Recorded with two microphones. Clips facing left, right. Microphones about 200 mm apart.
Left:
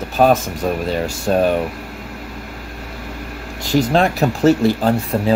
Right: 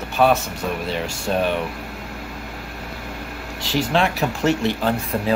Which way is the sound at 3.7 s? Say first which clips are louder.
Left 5 dB; 45° left (ahead or behind).